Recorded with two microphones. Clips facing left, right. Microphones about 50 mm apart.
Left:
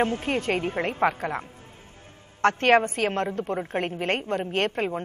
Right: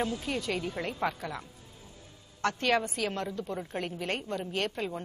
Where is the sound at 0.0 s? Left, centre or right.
Left.